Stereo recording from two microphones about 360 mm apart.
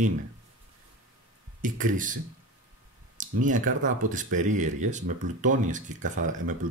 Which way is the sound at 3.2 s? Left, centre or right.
Right.